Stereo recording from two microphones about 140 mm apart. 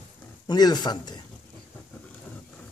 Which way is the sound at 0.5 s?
30° left (ahead or behind).